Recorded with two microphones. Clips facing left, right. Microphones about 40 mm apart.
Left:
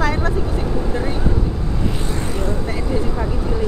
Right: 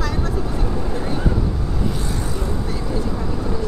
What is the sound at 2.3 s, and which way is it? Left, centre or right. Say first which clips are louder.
Vehicle: left 3 dB; left.